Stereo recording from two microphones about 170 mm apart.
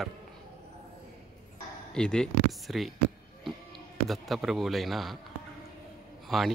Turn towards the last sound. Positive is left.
turn(degrees=0)  # may be behind; listen again after turning